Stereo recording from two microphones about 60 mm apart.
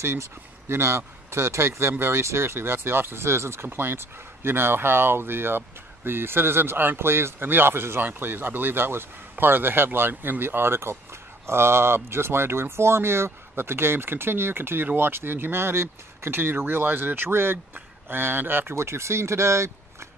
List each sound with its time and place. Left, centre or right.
0.0 s speech: right